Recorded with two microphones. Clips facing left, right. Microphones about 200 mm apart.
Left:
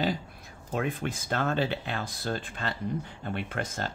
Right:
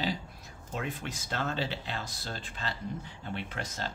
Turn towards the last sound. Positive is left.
turn(degrees=50)  # may be behind; listen again after turning